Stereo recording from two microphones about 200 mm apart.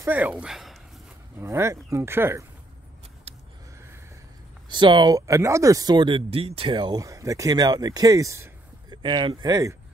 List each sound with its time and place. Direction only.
0.0 s speech: 10° right (ahead or behind)
1.4 s speech: 15° right (ahead or behind)
3.3 s a sound: 30° right (ahead or behind)
4.6 s speech: 25° right (ahead or behind)